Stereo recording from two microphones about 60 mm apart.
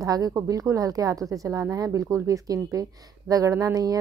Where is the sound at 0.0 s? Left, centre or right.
Right.